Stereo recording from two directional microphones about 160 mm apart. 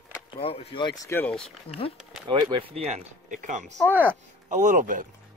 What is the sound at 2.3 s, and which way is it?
Speech, 30° right (ahead or behind).